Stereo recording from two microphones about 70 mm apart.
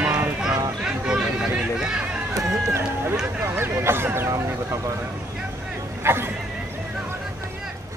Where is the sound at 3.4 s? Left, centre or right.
Right.